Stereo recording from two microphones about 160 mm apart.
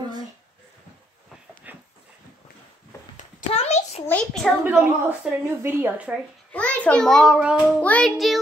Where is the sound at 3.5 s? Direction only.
40° left (ahead or behind).